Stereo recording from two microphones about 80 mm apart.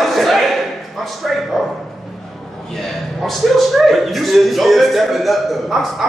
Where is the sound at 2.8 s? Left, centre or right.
Centre.